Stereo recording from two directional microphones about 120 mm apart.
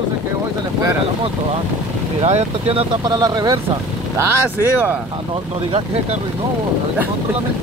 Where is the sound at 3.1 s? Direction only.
35° right (ahead or behind).